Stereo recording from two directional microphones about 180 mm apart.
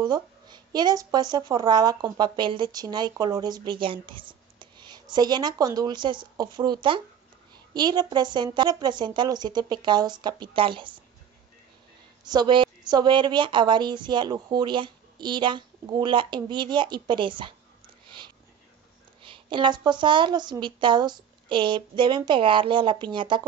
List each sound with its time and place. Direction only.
0.0 s speech: 25° right (ahead or behind)
12.3 s speech: 25° right (ahead or behind)
19.2 s speech: 25° right (ahead or behind)